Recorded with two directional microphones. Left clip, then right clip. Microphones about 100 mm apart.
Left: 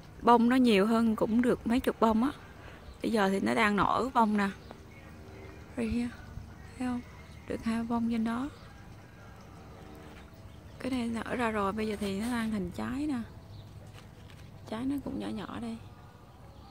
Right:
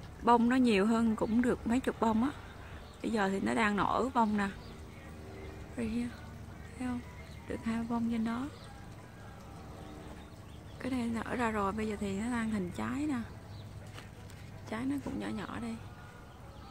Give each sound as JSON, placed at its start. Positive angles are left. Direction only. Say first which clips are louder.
{"t": 0.4, "sound": "a woman's voice", "louder": "left 3 dB", "side_deg": 40}
{"t": 5.8, "sound": "a woman's voice", "louder": "left 4 dB", "side_deg": 55}
{"t": 10.8, "sound": "a woman's voice", "louder": "left 2 dB", "side_deg": 30}
{"t": 14.7, "sound": "a woman's voice", "louder": "left 2 dB", "side_deg": 55}